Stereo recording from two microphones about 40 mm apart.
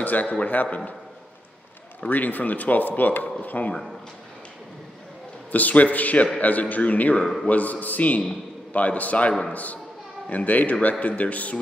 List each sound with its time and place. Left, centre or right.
0.0 s a man's voice: left
2.0 s speech: left
3.4 s a man's voice: left
5.5 s a man's voice: left